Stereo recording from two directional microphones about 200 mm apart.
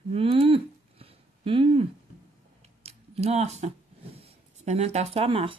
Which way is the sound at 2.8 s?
30° right (ahead or behind).